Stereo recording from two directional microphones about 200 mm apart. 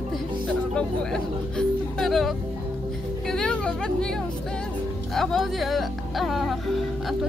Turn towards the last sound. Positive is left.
turn(degrees=0)  # may be behind; listen again after turning